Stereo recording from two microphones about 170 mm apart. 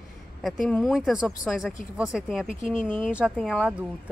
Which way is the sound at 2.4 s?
45° left (ahead or behind).